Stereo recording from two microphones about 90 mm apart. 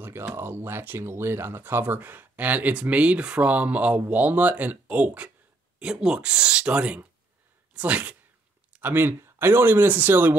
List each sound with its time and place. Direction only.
0.0 s speech: 25° right (ahead or behind)